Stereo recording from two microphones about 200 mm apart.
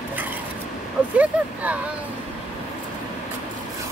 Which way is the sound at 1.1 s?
5° right (ahead or behind).